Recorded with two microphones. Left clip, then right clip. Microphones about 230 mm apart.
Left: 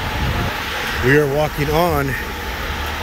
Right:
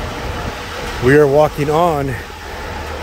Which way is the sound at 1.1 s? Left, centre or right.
Centre.